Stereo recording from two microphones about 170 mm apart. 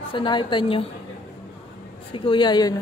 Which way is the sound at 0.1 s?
25° left (ahead or behind).